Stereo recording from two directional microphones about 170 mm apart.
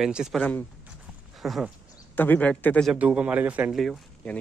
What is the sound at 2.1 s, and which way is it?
Speech, 10° left (ahead or behind).